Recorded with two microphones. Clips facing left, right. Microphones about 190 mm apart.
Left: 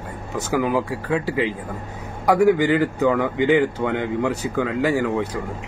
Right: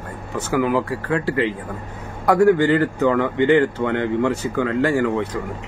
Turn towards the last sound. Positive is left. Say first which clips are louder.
# right 1 dB
turn(degrees=10)  # may be behind; listen again after turning